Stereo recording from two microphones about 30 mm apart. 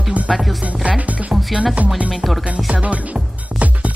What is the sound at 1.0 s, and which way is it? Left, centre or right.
Speech, right.